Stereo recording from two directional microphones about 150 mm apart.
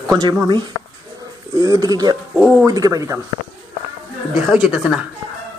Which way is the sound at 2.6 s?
20° right (ahead or behind).